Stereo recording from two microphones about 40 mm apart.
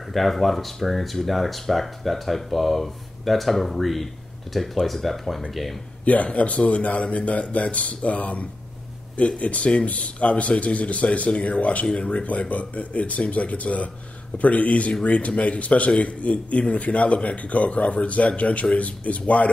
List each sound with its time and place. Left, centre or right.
0.1 s speech: centre
6.0 s a man's voice: left